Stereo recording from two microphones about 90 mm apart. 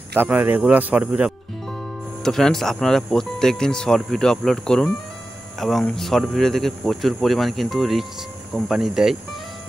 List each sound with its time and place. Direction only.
0.1 s speech: 20° right (ahead or behind)
2.2 s speech: 5° left (ahead or behind)